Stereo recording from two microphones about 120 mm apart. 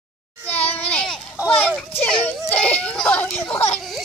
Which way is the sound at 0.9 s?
10° left (ahead or behind).